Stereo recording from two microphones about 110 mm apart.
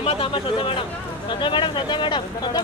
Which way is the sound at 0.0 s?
55° left (ahead or behind).